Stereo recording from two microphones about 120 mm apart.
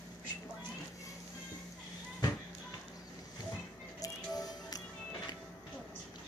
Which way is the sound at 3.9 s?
30° left (ahead or behind).